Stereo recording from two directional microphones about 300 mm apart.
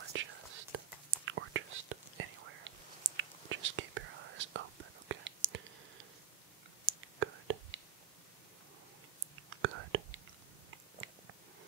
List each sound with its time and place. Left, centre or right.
0.1 s whispering: right
6.9 s whispering: right
9.6 s whispering: right
11.0 s biting: right